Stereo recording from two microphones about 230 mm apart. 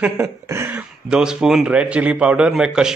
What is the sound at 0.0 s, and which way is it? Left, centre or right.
Speech, centre.